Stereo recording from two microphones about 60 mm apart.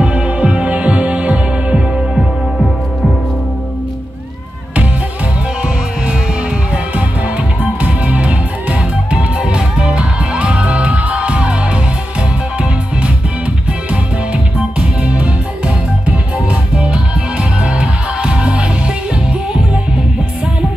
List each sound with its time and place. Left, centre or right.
0.0 s music: centre
6.7 s music: right